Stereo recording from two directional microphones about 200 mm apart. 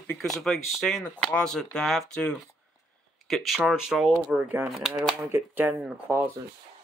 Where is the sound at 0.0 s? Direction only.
5° left (ahead or behind).